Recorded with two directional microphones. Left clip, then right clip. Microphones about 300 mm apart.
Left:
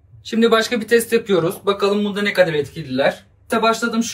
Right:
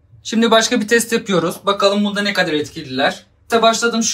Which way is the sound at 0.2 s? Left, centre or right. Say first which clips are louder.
Right 2 dB; centre.